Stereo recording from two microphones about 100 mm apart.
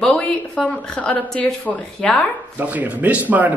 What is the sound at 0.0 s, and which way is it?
A woman's voice, 10° left (ahead or behind).